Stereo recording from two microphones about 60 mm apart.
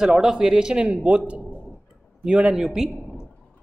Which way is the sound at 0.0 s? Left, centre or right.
Centre.